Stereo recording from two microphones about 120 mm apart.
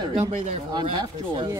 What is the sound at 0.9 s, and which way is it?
Speech, 40° right (ahead or behind).